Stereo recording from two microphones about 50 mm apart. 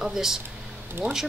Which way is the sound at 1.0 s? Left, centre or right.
Right.